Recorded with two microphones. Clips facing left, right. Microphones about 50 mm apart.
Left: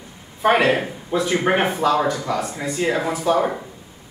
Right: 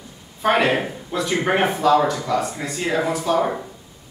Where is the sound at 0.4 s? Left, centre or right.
Centre.